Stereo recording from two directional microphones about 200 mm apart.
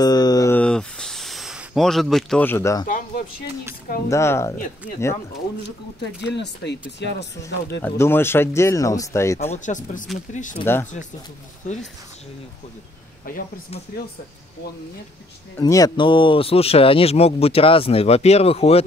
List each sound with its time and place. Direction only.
0.0 s a sound: 20° left (ahead or behind)
0.6 s a sound: 5° left (ahead or behind)
4.1 s speech: 15° left (ahead or behind)
6.3 s speech: 60° left (ahead or behind)
7.8 s speech: 10° left (ahead or behind)
9.5 s speech: 40° left (ahead or behind)
10.6 s speech: 10° left (ahead or behind)
15.6 s speech: 20° left (ahead or behind)